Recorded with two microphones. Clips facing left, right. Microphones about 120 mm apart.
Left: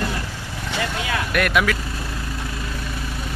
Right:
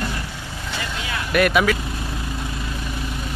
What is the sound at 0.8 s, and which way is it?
Vehicle, 65° left (ahead or behind).